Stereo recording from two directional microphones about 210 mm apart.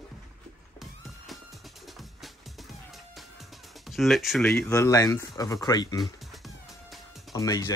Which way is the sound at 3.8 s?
Centre (ahead or behind).